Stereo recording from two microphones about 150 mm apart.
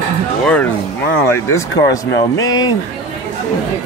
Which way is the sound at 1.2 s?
20° left (ahead or behind).